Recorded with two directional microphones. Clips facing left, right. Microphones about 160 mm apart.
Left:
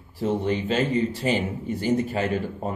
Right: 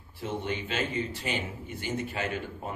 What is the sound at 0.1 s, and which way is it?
A man's voice, 40° left (ahead or behind).